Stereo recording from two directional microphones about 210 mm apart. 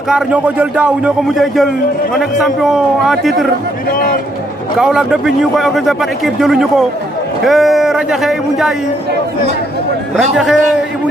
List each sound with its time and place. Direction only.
0.1 s speech: 5° right (ahead or behind)
3.9 s speech: 40° left (ahead or behind)
4.7 s speech: 5° right (ahead or behind)
10.1 s speech: 5° right (ahead or behind)